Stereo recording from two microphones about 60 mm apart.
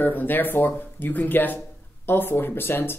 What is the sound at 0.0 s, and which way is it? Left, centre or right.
Speech, left.